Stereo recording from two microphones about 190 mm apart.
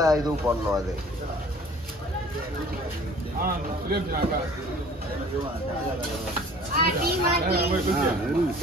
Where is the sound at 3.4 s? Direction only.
50° right (ahead or behind).